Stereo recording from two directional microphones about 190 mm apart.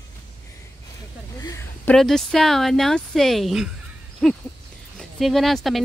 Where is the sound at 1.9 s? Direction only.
Centre (ahead or behind).